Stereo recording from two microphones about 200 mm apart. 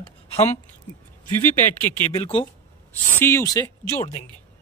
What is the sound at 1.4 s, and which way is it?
Speech, 10° left (ahead or behind).